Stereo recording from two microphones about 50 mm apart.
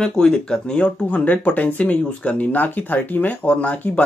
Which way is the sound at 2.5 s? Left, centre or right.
Left.